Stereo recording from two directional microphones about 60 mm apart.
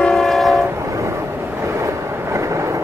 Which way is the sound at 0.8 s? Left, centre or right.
Right.